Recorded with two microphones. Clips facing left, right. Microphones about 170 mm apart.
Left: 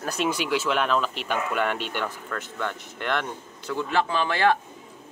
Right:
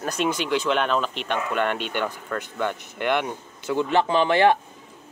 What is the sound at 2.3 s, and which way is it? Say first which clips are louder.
Speech: right 4 dB; 10° right (ahead or behind).